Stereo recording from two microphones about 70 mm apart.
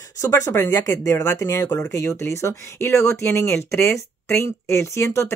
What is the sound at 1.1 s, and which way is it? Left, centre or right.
Speech, left.